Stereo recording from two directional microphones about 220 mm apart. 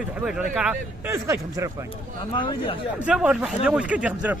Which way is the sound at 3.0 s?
5° right (ahead or behind).